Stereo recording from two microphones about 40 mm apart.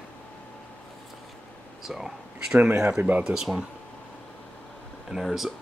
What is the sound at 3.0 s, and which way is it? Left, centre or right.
Speech, right.